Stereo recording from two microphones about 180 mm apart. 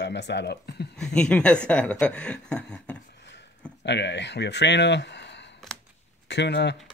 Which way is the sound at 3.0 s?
70° left (ahead or behind).